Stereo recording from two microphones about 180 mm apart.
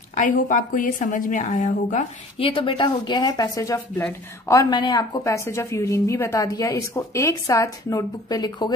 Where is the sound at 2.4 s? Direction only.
30° left (ahead or behind).